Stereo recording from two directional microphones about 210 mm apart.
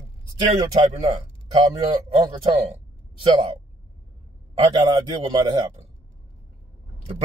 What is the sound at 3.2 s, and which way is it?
Speech, 25° right (ahead or behind).